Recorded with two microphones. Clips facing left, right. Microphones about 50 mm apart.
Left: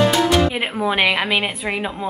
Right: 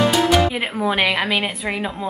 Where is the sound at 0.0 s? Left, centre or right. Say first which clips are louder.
Even; centre.